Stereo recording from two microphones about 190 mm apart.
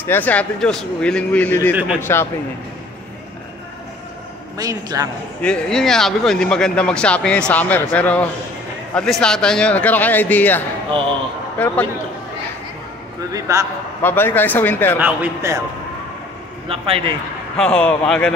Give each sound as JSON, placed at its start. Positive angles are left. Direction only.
{"t": 0.0, "sound": "a man's voice", "side_deg": 10}
{"t": 4.6, "sound": "a man's voice", "side_deg": -20}
{"t": 5.4, "sound": "a man's voice", "side_deg": 5}
{"t": 10.9, "sound": "a man's voice", "side_deg": -25}
{"t": 11.5, "sound": "a man's voice", "side_deg": 10}
{"t": 13.3, "sound": "speech", "side_deg": -15}
{"t": 14.0, "sound": "a man's voice", "side_deg": 10}
{"t": 15.0, "sound": "speech", "side_deg": -10}
{"t": 16.6, "sound": "a man's voice", "side_deg": -30}
{"t": 17.6, "sound": "speech", "side_deg": 5}